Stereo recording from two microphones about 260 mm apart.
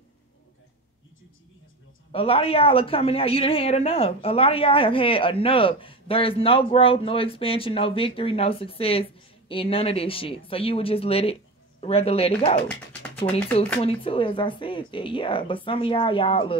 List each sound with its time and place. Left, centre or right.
2.1 s a woman's voice: left